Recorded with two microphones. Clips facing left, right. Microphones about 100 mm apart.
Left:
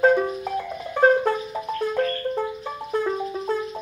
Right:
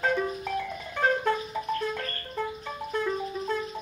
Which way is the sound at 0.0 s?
25° left (ahead or behind).